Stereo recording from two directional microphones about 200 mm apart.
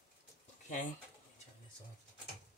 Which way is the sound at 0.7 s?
40° left (ahead or behind).